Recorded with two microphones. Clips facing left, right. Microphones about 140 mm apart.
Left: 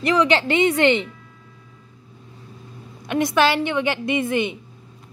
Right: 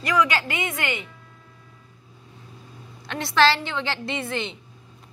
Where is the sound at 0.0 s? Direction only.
25° left (ahead or behind).